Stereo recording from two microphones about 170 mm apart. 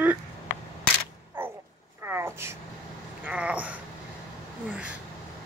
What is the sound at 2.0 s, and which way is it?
Vehicle, 15° right (ahead or behind).